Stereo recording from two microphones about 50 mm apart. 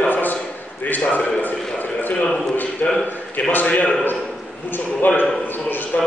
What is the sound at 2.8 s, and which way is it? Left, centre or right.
A man's voice, left.